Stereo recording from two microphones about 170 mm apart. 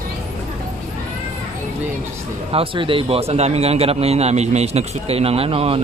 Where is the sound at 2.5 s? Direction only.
30° right (ahead or behind).